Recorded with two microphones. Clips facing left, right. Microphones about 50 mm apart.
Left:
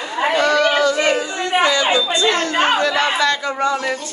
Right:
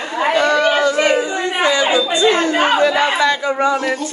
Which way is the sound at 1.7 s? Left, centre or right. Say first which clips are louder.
Right 2 dB; right.